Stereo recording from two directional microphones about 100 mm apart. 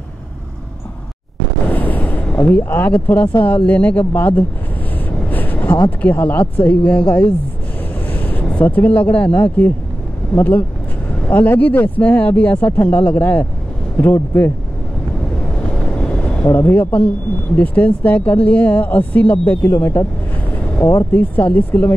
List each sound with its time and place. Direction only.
1.7 s vehicle: 15° left (ahead or behind)
3.4 s speech: 15° left (ahead or behind)
5.3 s vehicle: 15° left (ahead or behind)
5.9 s speech: 15° left (ahead or behind)
16.4 s speech: 20° left (ahead or behind)
20.5 s vehicle: 15° left (ahead or behind)
21.1 s speech: 15° left (ahead or behind)